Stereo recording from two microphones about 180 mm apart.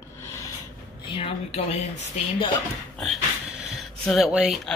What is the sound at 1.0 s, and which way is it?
Speech, 30° left (ahead or behind).